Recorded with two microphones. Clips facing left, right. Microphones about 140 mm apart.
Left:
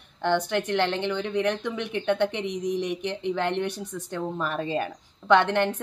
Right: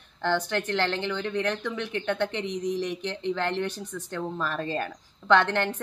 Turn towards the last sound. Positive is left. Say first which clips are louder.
# left 2 dB
turn(degrees=15)  # may be behind; listen again after turning